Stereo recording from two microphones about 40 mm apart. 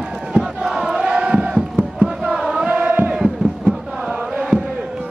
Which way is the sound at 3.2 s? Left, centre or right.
Centre.